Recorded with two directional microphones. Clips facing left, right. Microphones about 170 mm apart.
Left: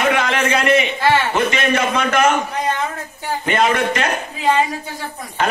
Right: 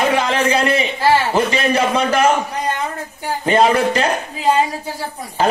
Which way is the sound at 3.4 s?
35° right (ahead or behind).